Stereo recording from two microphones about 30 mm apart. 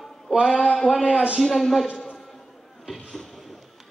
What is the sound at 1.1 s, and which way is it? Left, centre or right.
Speech, right.